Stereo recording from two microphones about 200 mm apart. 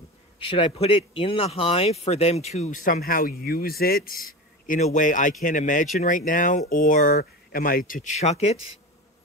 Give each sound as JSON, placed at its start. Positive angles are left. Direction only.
{"t": 0.4, "sound": "speech", "side_deg": 30}